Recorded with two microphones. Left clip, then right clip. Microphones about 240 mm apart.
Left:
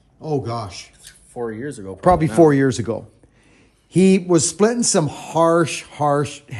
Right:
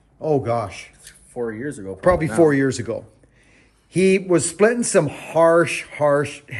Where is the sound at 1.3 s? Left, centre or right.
Left.